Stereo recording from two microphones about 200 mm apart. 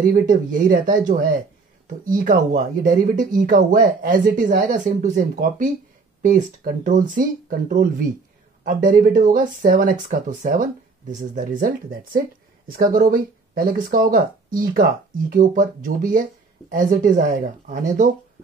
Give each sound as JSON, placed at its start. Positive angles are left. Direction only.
{"t": 0.0, "sound": "speech", "side_deg": -45}